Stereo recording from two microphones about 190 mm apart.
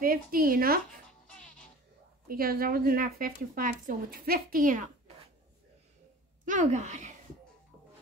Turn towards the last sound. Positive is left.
turn(degrees=-40)  # may be behind; listen again after turning